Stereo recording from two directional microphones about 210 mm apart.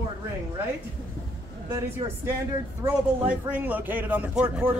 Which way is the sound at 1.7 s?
15° right (ahead or behind).